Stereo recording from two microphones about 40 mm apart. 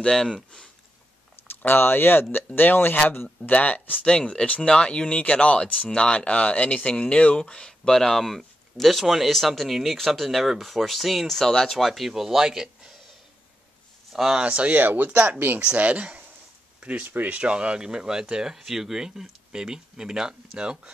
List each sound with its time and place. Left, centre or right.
0.1 s speech: centre
1.6 s speech: left
2.3 s speech: left
3.5 s speech: left
4.3 s speech: left
7.0 s speech: left; by 11.3 s centre
11.3 s speech: centre
14.1 s speech: centre
14.4 s speech: right
14.7 s speech: right
15.3 s speech: right
15.6 s speech: right
17.0 s speech: right
17.3 s speech: right